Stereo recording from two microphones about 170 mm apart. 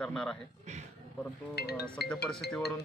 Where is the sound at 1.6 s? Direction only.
70° left (ahead or behind).